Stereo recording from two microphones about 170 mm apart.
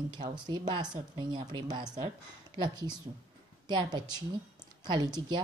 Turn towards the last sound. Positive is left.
turn(degrees=-25)  # may be behind; listen again after turning